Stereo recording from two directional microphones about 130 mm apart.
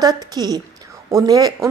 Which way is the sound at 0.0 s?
30° right (ahead or behind).